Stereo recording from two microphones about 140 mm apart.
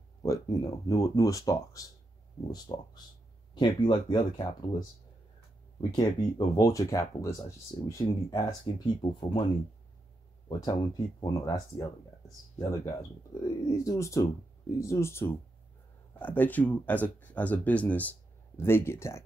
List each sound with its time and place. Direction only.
0.2 s speech: 25° left (ahead or behind)
10.6 s speech: 30° left (ahead or behind)
12.6 s speech: 20° left (ahead or behind)